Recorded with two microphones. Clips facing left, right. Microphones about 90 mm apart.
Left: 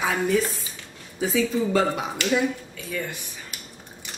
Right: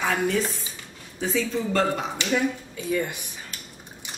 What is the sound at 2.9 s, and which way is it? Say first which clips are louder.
Speech: right 5 dB; 20° right (ahead or behind).